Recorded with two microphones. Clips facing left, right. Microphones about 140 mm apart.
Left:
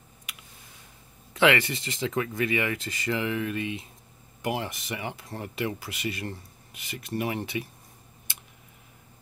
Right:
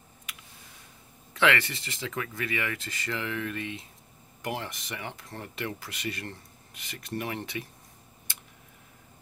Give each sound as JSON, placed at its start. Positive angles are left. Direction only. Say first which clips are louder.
{"t": 1.3, "sound": "speech", "louder": "left 3 dB", "side_deg": 15}